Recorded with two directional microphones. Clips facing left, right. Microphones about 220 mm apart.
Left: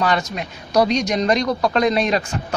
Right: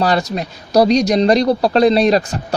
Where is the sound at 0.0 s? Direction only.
35° right (ahead or behind).